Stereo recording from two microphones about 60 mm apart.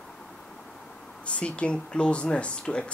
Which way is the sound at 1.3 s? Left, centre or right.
Centre.